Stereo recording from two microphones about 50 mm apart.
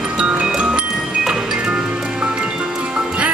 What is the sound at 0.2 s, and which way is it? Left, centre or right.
Music, centre.